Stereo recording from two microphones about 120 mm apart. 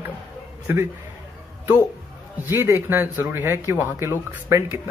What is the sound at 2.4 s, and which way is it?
Speech, 15° right (ahead or behind).